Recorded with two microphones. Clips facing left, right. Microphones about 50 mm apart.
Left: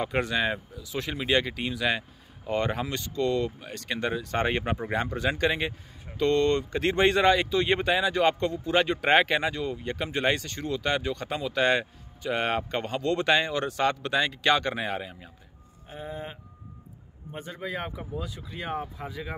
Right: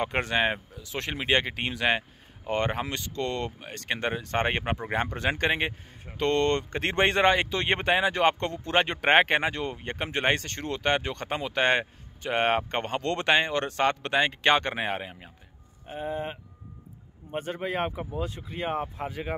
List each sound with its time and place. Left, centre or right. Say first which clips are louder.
0.0 s speech: right 1 dB; right
17.3 s speech: right 4 dB; right